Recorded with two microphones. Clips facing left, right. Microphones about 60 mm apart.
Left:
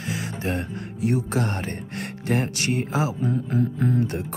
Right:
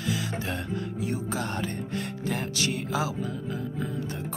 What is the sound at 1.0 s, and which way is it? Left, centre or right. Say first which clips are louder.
Music: left 9 dB; left.